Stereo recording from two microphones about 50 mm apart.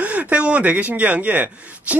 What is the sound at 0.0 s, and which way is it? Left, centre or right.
Speech, right.